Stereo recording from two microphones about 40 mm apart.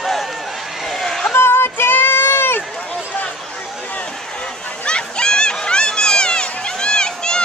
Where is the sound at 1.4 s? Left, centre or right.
Left.